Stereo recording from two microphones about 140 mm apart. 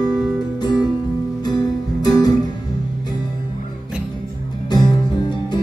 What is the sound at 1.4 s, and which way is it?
Music, 30° left (ahead or behind).